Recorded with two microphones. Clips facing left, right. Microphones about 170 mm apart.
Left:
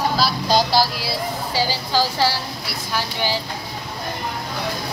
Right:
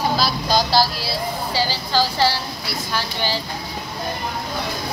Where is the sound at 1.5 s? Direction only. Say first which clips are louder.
Left 1 dB; 10° left (ahead or behind).